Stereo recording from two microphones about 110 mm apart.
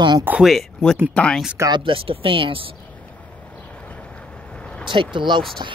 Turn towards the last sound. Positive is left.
turn(degrees=-45)  # may be behind; listen again after turning